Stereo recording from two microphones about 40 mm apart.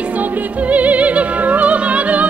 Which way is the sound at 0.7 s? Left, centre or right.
Right.